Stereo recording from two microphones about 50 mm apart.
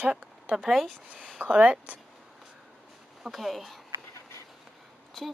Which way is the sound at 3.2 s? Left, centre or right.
Centre.